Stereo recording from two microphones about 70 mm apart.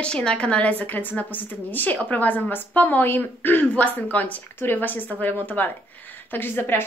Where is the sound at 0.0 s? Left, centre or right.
Centre.